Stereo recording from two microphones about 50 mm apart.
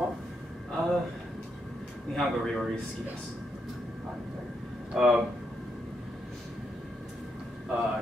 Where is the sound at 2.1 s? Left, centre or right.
Centre.